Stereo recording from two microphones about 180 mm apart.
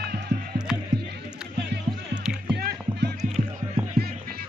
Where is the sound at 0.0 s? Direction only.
65° right (ahead or behind).